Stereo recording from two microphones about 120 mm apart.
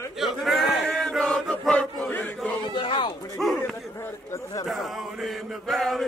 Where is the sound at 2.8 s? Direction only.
45° left (ahead or behind).